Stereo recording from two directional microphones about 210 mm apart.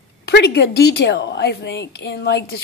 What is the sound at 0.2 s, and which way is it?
A woman's voice, 55° left (ahead or behind).